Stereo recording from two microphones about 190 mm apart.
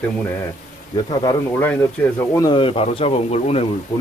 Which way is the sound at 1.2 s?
10° left (ahead or behind).